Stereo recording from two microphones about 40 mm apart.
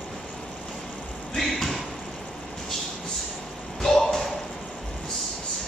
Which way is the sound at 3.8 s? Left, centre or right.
Centre.